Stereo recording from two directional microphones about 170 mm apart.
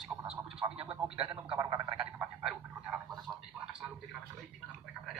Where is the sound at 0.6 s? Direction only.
35° right (ahead or behind).